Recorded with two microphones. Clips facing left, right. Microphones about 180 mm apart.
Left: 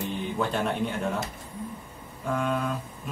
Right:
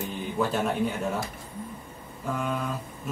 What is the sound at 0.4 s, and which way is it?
Mantra, 5° right (ahead or behind).